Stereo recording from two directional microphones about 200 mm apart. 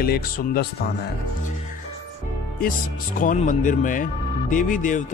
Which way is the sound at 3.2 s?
40° left (ahead or behind).